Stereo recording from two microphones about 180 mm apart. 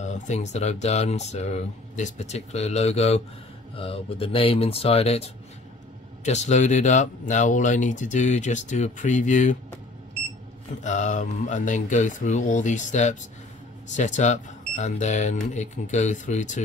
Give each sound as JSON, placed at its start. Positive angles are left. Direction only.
{"t": 0.0, "sound": "speech", "side_deg": 40}
{"t": 10.8, "sound": "speech", "side_deg": 40}